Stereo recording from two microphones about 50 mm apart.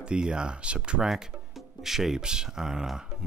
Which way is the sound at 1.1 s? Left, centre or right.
Centre.